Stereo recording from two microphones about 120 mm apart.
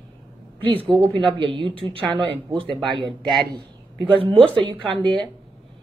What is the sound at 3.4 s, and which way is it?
A woman's voice, 40° right (ahead or behind).